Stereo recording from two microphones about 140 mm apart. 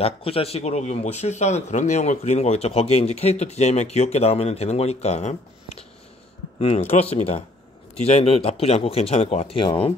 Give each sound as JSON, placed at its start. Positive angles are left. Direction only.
{"t": 0.0, "sound": "speech", "side_deg": 45}
{"t": 6.6, "sound": "speech", "side_deg": 45}